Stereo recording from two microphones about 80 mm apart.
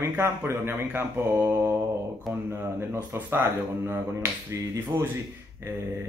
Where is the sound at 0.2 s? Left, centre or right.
Right.